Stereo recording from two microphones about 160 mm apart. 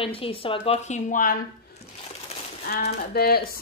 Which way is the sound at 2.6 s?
75° left (ahead or behind).